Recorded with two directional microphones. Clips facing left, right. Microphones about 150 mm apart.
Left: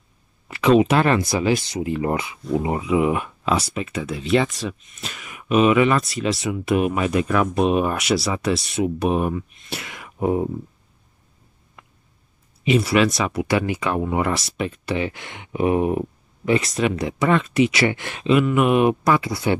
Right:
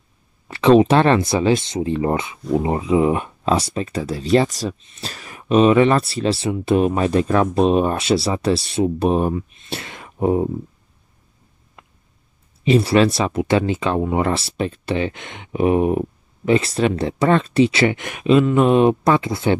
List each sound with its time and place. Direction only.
0.5 s speech: 30° right (ahead or behind)
9.7 s a sound: 30° right (ahead or behind)
12.6 s speech: 30° right (ahead or behind)